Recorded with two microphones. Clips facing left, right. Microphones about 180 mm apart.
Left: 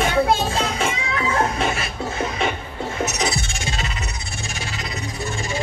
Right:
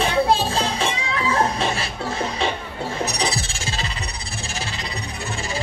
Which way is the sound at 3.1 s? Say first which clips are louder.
Left 1 dB; 30° right (ahead or behind).